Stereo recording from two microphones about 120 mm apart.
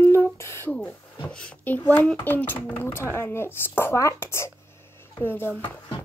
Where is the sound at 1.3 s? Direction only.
10° left (ahead or behind).